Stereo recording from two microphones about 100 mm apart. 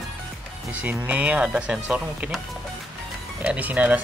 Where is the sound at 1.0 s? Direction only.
15° right (ahead or behind).